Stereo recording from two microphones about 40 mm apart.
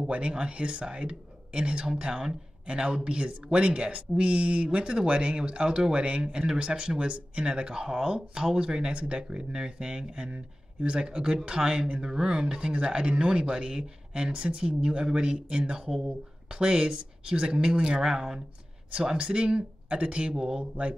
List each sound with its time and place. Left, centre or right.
0.0 s speech: right
15.7 s speech: centre